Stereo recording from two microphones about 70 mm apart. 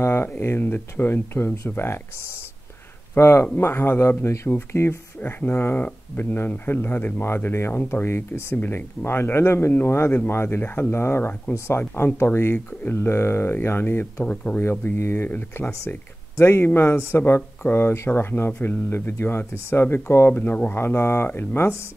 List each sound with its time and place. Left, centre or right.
0.0 s speech: left
3.2 s speech: left
11.8 s speech: left
14.2 s speech: centre
14.6 s speech: left